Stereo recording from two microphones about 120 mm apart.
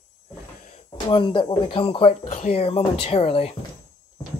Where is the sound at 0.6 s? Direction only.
80° left.